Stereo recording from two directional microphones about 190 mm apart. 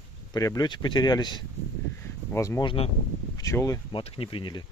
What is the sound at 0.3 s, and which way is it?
Speech, 20° left (ahead or behind).